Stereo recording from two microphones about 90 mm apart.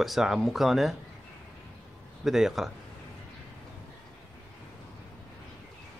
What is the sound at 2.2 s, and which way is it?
Speech, 5° right (ahead or behind).